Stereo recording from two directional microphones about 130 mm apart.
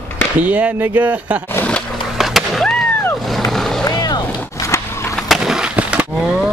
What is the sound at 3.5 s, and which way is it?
Vehicle, 5° left (ahead or behind).